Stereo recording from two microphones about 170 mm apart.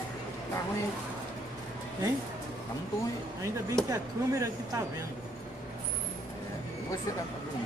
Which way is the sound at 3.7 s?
20° right (ahead or behind).